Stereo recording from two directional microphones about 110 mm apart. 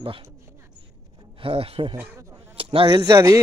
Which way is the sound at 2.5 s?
50° right (ahead or behind).